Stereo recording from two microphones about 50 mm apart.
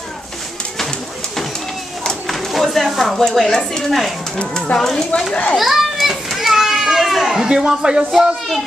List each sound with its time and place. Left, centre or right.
2.2 s speech: centre
5.3 s a child's voice: left
5.6 s children playing: centre